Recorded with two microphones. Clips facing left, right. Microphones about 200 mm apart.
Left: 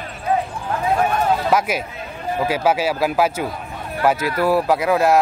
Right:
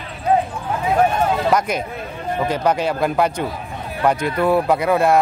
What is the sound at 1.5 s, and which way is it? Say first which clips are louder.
Speech: even; 5° left (ahead or behind).